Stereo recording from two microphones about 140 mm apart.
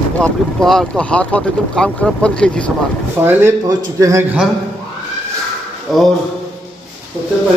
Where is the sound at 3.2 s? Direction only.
15° right (ahead or behind).